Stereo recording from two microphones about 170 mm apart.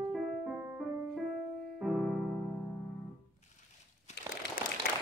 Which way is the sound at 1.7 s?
5° right (ahead or behind).